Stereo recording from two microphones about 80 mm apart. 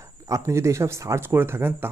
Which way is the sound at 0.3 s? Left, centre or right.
Right.